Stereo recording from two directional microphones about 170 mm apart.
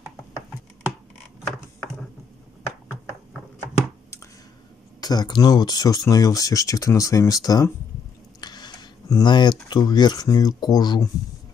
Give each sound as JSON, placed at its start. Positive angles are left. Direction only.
{"t": 5.0, "sound": "speech", "side_deg": 25}